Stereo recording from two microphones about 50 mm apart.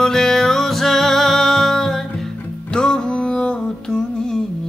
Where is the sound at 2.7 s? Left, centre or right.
Centre.